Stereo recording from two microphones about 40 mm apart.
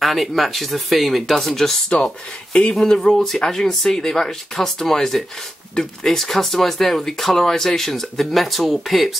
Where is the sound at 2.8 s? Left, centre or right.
Centre.